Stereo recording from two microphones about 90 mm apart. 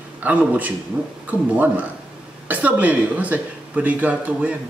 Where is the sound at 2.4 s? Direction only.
20° right (ahead or behind).